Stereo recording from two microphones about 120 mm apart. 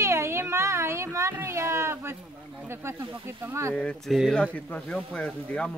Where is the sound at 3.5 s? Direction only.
25° right (ahead or behind).